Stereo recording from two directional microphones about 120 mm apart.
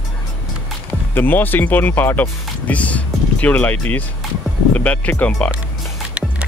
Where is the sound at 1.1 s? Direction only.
15° left (ahead or behind).